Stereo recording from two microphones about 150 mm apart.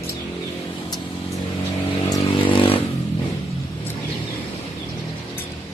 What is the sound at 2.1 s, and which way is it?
Vehicle, 35° left (ahead or behind).